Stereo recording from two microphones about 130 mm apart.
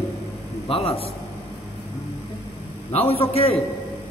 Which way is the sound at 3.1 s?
50° left (ahead or behind).